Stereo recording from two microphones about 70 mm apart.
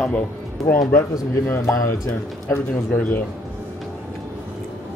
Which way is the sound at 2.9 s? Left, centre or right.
Left.